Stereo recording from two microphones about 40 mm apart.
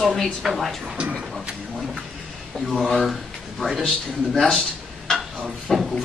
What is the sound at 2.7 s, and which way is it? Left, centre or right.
Speech, centre.